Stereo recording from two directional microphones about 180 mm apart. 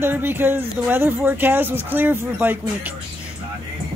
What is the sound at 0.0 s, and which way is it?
Speech, 10° right (ahead or behind).